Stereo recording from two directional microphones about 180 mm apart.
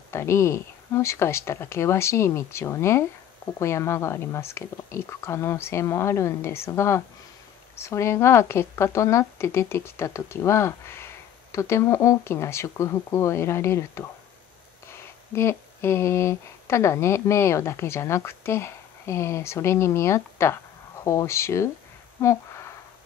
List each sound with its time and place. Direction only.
0.1 s speech: 15° left (ahead or behind)